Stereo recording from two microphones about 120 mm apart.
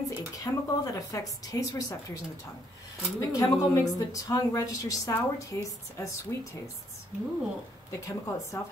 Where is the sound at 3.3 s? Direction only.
30° left (ahead or behind).